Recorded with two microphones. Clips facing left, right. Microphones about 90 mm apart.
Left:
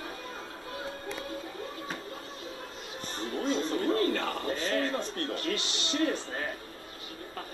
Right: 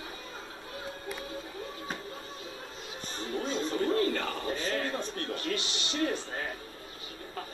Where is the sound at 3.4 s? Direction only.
55° left (ahead or behind).